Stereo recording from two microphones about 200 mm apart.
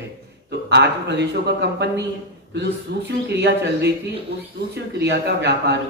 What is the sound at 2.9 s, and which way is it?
Speech, 60° right (ahead or behind).